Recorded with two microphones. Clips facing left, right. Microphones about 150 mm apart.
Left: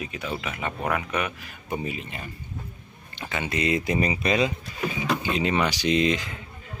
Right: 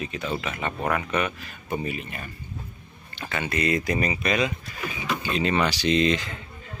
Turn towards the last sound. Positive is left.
turn(degrees=10)  # may be behind; listen again after turning